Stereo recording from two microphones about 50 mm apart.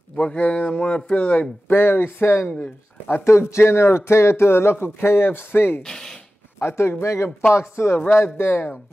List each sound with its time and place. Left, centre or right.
0.2 s speech: left
1.7 s speech: left
2.4 s speech: left
3.3 s speech: left
5.8 s speech: centre
6.6 s speech: left